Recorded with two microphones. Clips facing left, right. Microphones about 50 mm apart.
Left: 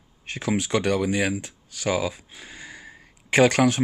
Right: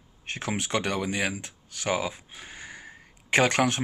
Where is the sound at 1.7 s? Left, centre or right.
Right.